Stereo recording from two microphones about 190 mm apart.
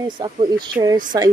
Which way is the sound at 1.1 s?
20° right (ahead or behind).